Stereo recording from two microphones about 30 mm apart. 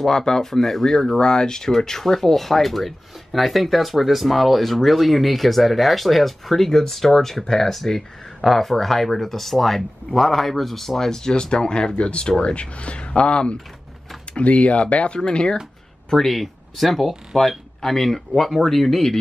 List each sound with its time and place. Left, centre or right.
0.1 s speech: left
0.5 s speech: centre
11.4 s speech: left
15.1 s speech: left
16.1 s speech: centre